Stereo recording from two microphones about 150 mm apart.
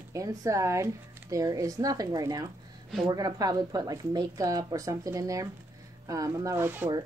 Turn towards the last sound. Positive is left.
turn(degrees=-15)  # may be behind; listen again after turning